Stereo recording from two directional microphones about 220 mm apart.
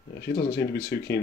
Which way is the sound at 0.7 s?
45° left (ahead or behind).